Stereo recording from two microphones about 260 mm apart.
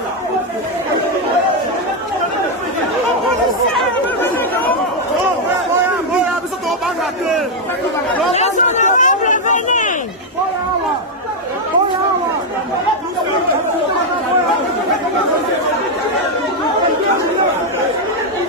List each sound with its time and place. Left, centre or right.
8.3 s chatter: left